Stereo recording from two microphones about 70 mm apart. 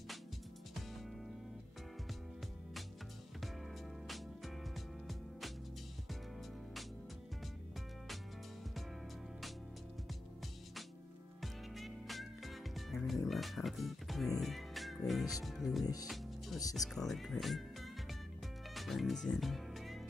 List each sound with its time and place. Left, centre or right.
4.7 s music: centre
11.4 s music: centre
13.3 s speech: centre
15.8 s speech: left
16.1 s music: centre
16.7 s speech: centre
18.8 s speech: centre